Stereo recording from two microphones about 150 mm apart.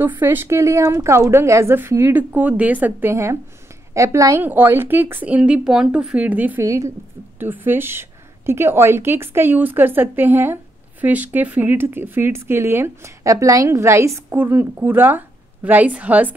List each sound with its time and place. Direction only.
0.2 s a woman's voice: 15° right (ahead or behind)